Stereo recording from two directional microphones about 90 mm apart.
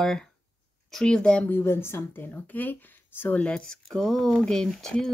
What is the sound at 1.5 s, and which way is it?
Speech, 25° left (ahead or behind).